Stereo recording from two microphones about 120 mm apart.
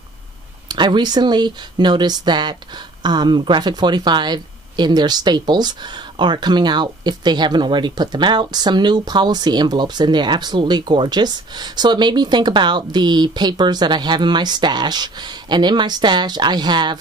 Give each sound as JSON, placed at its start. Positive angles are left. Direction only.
{"t": 0.7, "sound": "speech", "side_deg": -40}